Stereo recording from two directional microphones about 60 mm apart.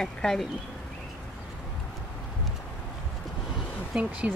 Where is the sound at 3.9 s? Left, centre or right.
Centre.